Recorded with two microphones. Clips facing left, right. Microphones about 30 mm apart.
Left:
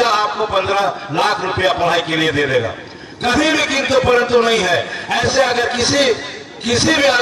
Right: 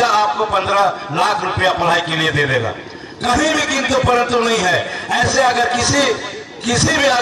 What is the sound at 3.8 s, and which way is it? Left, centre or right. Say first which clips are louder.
Speech: left 2 dB; left.